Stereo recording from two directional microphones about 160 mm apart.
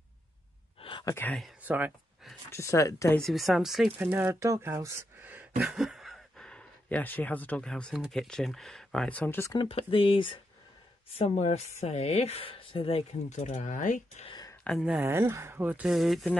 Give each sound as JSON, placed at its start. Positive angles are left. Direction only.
{"t": 0.7, "sound": "a sound", "side_deg": 30}
{"t": 1.1, "sound": "speech", "side_deg": 10}
{"t": 1.6, "sound": "speech", "side_deg": -10}
{"t": 2.5, "sound": "speech", "side_deg": 20}
{"t": 3.2, "sound": "speech", "side_deg": 0}
{"t": 9.6, "sound": "speech", "side_deg": 35}
{"t": 14.2, "sound": "a sound", "side_deg": 25}
{"t": 14.6, "sound": "speech", "side_deg": 0}
{"t": 15.0, "sound": "speech", "side_deg": -15}